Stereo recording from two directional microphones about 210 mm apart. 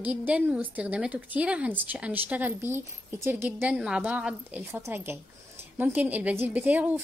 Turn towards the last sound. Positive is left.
turn(degrees=-10)  # may be behind; listen again after turning